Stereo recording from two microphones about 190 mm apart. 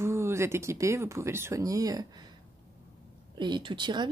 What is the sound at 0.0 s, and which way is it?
Speech, 15° right (ahead or behind).